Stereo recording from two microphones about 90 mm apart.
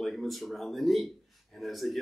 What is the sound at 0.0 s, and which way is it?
A man's voice, centre (ahead or behind).